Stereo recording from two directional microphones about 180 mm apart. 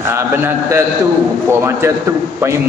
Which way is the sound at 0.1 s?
15° right (ahead or behind).